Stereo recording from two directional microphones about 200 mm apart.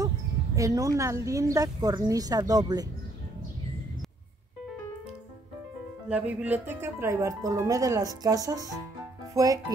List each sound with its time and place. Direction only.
0.6 s speech: 15° right (ahead or behind)
6.0 s speech: 5° right (ahead or behind)